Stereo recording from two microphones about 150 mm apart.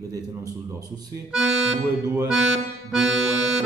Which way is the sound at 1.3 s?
5° right (ahead or behind).